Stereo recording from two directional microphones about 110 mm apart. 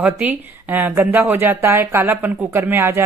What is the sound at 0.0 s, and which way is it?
Speech, 15° right (ahead or behind).